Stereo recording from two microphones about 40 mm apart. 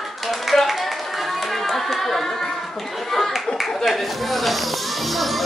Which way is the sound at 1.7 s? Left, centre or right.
Centre.